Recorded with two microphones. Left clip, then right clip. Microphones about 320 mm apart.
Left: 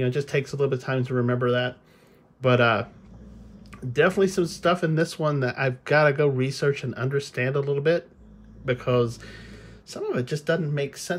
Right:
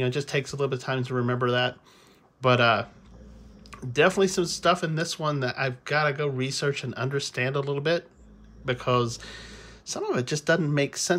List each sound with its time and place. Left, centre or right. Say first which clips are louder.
0.0 s speech: left 2 dB; centre